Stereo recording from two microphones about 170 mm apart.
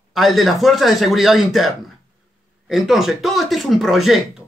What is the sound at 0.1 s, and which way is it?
A man's voice, centre (ahead or behind).